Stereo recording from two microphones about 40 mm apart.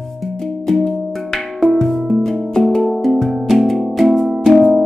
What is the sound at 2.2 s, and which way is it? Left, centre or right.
Music, centre.